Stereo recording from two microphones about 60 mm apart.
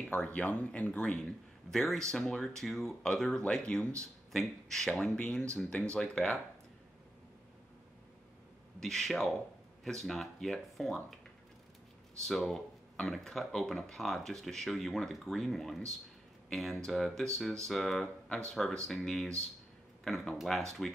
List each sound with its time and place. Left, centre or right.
0.2 s speech: left
1.7 s speech: centre
5.1 s speech: centre
8.7 s speech: centre
12.3 s speech: centre